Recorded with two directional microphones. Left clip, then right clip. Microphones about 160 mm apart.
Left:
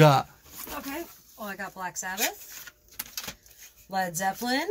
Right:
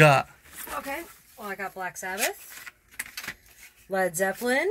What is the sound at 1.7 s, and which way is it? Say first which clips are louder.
Speech: right 1 dB; 35° right (ahead or behind).